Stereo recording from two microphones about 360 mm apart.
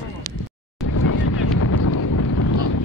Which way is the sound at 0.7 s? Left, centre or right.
Left.